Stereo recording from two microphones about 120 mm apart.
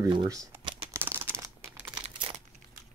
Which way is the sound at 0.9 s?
20° right (ahead or behind).